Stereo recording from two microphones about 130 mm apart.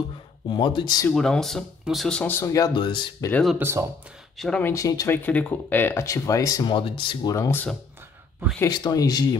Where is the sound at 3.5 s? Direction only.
20° right (ahead or behind).